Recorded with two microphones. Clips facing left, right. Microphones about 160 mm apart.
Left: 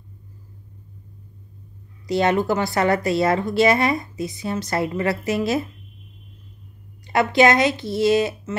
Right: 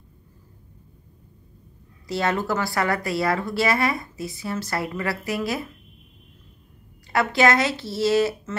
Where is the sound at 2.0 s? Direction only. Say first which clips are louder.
Left 5 dB; 20° left (ahead or behind).